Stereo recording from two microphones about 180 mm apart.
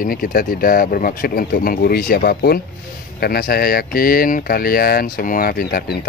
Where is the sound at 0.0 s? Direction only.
55° left (ahead or behind).